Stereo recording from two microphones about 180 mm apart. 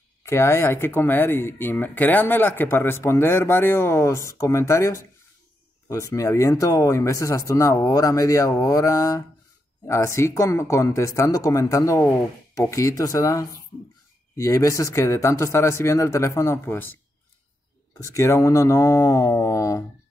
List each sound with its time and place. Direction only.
0.2 s speech: 15° left (ahead or behind)